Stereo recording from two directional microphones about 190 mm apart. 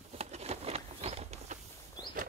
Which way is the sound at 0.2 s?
35° right (ahead or behind).